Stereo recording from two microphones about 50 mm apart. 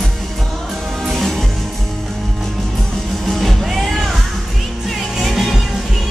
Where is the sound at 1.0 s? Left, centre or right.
Centre.